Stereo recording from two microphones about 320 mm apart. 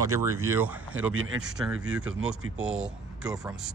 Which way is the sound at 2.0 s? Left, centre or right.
Right.